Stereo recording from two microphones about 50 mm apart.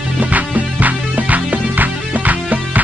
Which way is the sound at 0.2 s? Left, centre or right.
Right.